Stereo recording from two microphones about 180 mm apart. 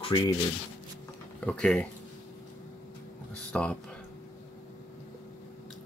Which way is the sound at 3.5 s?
5° left (ahead or behind).